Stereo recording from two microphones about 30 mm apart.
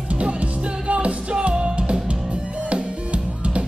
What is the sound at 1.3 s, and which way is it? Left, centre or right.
Music, right.